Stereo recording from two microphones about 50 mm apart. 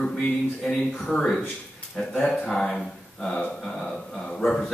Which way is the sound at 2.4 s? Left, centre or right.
Centre.